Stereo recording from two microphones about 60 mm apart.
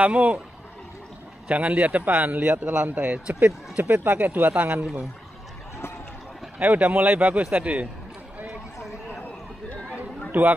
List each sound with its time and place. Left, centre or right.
0.0 s a man's voice: right
1.5 s a man's voice: right
6.6 s a man's voice: right
10.3 s speech: right